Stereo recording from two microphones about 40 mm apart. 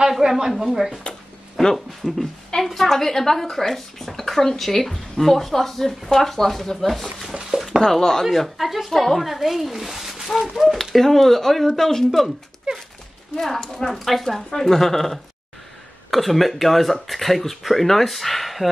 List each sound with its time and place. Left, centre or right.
0.3 s speech: centre
2.6 s speech: centre
8.3 s speech: centre
12.7 s speech: right
13.4 s speech: centre